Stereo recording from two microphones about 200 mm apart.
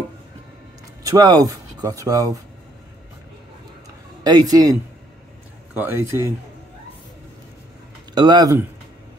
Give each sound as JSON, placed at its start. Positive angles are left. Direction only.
{"t": 1.0, "sound": "speech", "side_deg": -20}
{"t": 4.2, "sound": "speech", "side_deg": -20}
{"t": 5.8, "sound": "speech", "side_deg": -10}
{"t": 8.1, "sound": "speech", "side_deg": -20}